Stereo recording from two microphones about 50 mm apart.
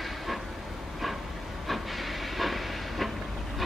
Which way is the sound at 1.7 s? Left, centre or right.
Centre.